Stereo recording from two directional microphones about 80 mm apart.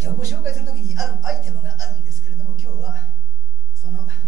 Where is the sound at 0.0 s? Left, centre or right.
Right.